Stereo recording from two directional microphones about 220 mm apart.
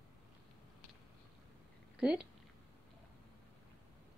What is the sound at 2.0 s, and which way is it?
Speech, 5° right (ahead or behind).